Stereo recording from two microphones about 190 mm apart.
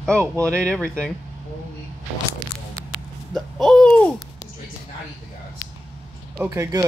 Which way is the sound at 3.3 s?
Centre (ahead or behind).